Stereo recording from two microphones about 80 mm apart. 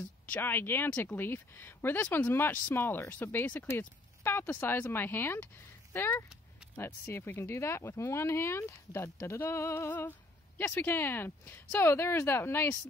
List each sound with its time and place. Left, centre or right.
0.3 s speech: left